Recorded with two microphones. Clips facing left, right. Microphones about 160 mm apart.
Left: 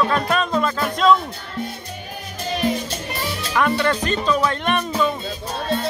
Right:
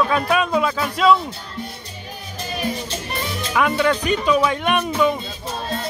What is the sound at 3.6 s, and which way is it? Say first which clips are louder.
Speech: right 1 dB; 5° right (ahead or behind).